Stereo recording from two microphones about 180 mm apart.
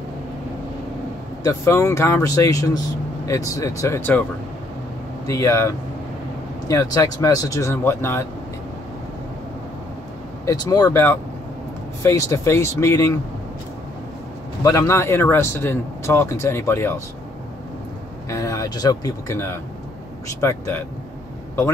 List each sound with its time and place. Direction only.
1.4 s a man's voice: 15° left (ahead or behind)
5.2 s a man's voice: 15° left (ahead or behind)
6.7 s a man's voice: 20° left (ahead or behind)
10.4 s a man's voice: 20° left (ahead or behind)
14.6 s a man's voice: 20° left (ahead or behind)
18.3 s a man's voice: 20° left (ahead or behind)